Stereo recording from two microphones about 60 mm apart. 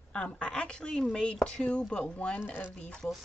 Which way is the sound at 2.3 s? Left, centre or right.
Left.